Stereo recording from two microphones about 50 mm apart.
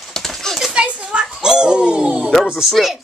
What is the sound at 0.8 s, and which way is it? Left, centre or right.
Children playing, centre.